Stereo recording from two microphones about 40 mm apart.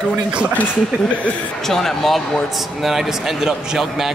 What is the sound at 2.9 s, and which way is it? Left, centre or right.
A man's voice, centre.